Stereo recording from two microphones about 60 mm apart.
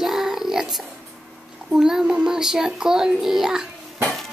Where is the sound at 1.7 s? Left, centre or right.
Centre.